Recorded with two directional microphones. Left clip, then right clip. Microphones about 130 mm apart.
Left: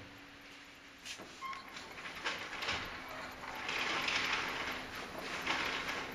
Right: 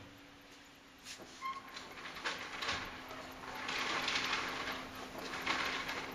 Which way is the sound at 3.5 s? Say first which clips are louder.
Left 1 dB; 20° right (ahead or behind).